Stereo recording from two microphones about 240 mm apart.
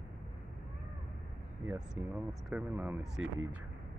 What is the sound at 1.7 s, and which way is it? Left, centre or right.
Speech, centre.